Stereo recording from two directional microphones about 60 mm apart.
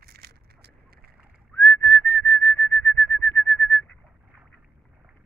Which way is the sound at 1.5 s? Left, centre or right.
Left.